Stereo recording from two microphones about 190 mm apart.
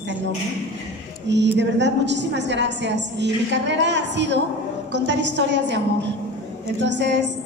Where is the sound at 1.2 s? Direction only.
65° right (ahead or behind).